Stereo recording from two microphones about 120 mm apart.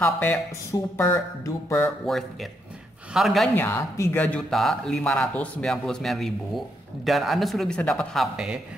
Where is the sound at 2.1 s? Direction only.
Centre (ahead or behind).